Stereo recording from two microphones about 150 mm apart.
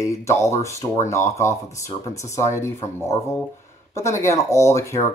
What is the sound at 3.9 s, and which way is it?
Speech, 20° left (ahead or behind).